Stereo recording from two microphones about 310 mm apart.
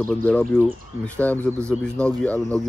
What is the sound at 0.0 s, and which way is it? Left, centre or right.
Speech, centre.